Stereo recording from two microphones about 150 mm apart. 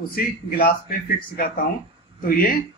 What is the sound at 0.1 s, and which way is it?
A man's voice, 80° left.